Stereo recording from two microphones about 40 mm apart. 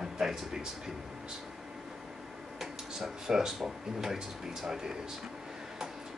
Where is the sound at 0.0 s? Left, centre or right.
Centre.